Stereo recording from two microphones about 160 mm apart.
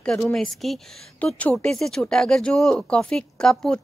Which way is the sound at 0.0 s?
5° left (ahead or behind).